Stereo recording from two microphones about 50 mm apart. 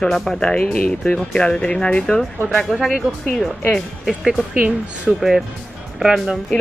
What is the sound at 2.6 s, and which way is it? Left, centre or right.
Speech, centre.